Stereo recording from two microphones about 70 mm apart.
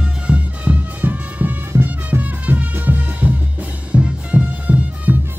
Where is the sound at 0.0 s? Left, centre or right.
Centre.